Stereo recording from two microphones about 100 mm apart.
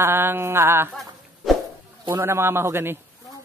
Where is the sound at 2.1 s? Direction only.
25° right (ahead or behind).